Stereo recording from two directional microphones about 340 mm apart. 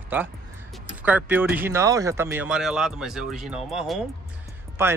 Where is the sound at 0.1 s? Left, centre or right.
Centre.